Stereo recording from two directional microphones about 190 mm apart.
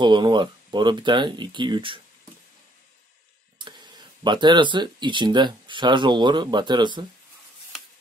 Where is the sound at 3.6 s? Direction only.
25° right (ahead or behind).